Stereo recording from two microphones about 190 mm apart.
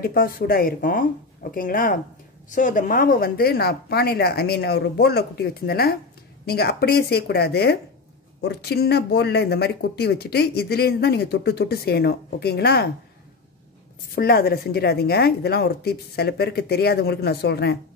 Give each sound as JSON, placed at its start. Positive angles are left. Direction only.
{"t": 0.0, "sound": "speech", "side_deg": 50}
{"t": 14.1, "sound": "speech", "side_deg": 55}